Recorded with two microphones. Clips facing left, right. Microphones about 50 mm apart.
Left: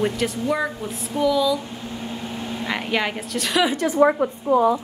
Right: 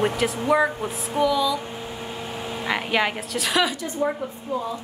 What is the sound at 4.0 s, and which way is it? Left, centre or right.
Speech, left.